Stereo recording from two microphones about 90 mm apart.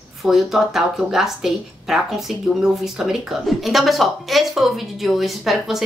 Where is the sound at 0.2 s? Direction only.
5° right (ahead or behind).